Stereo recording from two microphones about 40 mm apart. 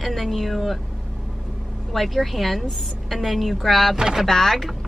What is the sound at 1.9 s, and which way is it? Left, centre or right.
A woman's voice, centre.